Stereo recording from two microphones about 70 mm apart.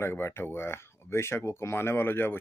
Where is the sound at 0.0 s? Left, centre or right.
Left.